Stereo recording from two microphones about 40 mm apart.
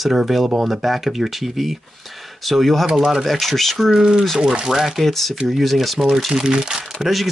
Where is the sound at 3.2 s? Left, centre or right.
Centre.